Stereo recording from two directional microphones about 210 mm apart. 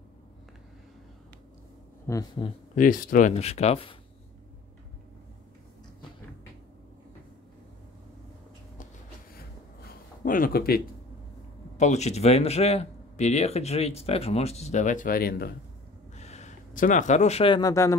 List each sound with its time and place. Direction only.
2.1 s speech: 10° left (ahead or behind)
2.7 s speech: 40° left (ahead or behind)
9.8 s a sound: 40° left (ahead or behind)
11.7 s speech: 35° left (ahead or behind)
16.2 s speech: 30° left (ahead or behind); by 17.9 s 15° left (ahead or behind)